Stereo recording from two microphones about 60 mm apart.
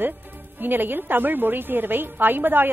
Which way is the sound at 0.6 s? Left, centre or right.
Right.